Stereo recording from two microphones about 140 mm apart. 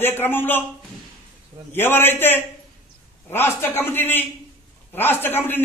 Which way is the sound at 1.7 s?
15° left (ahead or behind).